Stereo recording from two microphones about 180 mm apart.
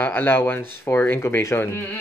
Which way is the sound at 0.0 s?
10° left (ahead or behind).